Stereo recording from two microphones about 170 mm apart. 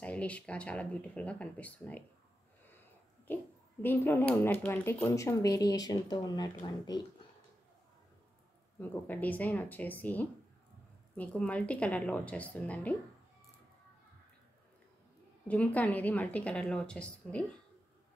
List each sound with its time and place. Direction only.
0.0 s speech: 10° left (ahead or behind)
3.3 s speech: 10° left (ahead or behind)
8.7 s speech: 10° left (ahead or behind)
15.4 s speech: 10° left (ahead or behind)